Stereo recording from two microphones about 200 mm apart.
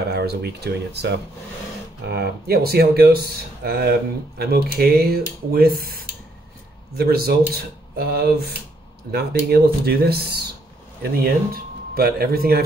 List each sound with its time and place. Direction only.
0.1 s a sound: 55° right (ahead or behind)
2.0 s speech: 55° right (ahead or behind)
7.0 s speech: 50° right (ahead or behind)